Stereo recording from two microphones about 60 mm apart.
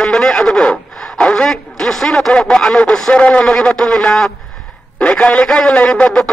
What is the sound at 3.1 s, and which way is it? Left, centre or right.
Speech, centre.